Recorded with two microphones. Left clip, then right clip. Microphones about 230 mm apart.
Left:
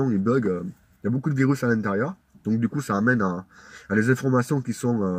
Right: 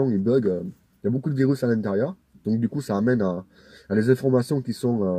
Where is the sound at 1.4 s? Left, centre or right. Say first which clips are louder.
Even; centre.